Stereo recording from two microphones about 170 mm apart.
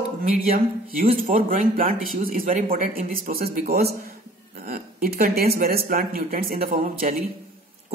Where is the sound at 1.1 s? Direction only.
55° right (ahead or behind).